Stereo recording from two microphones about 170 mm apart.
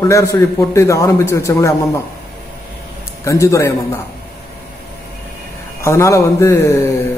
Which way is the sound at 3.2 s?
20° left (ahead or behind).